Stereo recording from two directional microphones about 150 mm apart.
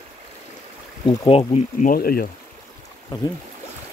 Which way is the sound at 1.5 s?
60° left (ahead or behind).